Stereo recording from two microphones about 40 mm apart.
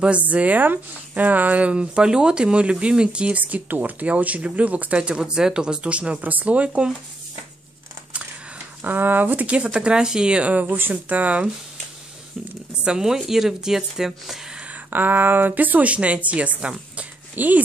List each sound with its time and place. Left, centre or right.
0.2 s speech: right
3.3 s speech: right
8.8 s speech: right; by 10.4 s centre
10.4 s a woman's voice: right
12.8 s a woman's voice: centre
14.9 s a woman's voice: right
17.4 s a woman's voice: right